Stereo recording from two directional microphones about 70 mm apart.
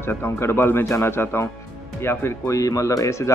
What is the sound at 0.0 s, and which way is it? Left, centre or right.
Speech, left.